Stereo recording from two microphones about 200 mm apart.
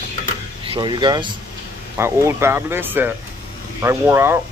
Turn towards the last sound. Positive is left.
turn(degrees=-10)  # may be behind; listen again after turning